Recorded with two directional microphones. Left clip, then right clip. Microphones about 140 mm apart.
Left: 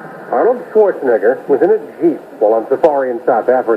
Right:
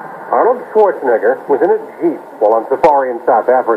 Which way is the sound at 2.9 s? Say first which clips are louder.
Right 2 dB; 30° left (ahead or behind).